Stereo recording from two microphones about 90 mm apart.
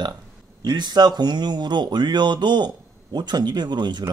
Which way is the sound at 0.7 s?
55° right (ahead or behind).